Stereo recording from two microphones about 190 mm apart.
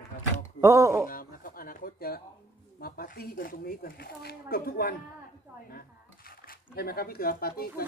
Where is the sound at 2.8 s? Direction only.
50° left (ahead or behind).